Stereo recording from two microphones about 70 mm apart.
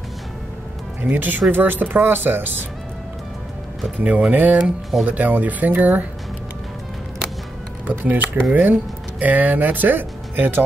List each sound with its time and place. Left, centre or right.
1.0 s speech: right
4.0 s speech: right
7.8 s speech: right